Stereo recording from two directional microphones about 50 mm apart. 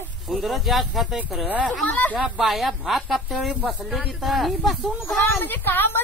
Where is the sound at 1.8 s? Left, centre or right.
Left.